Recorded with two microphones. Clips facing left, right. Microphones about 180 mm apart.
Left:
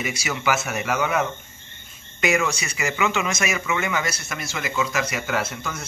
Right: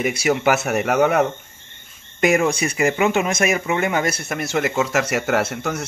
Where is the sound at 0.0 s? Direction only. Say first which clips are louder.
Right 8 dB; 55° right (ahead or behind).